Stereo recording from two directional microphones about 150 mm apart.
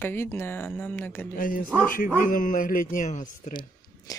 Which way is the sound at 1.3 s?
65° left (ahead or behind).